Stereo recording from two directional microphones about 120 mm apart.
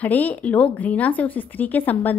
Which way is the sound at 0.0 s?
15° left (ahead or behind).